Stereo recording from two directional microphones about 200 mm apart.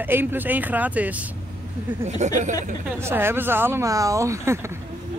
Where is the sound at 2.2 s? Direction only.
35° right (ahead or behind).